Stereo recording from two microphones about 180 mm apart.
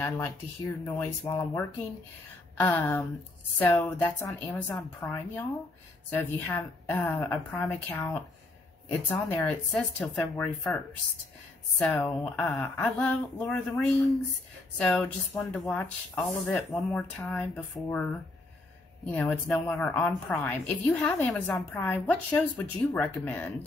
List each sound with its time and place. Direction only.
0.0 s a woman's voice: 15° left (ahead or behind)
2.6 s a woman's voice: 10° left (ahead or behind)
11.8 s a woman's voice: centre (ahead or behind)
19.1 s a woman's voice: 5° left (ahead or behind)